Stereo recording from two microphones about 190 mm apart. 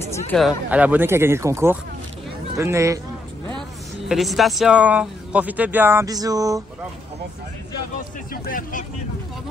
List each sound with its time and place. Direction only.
0.4 s speech: 5° right (ahead or behind)
4.1 s speech: centre (ahead or behind); by 6.6 s 20° right (ahead or behind)
8.3 s speech: 45° left (ahead or behind)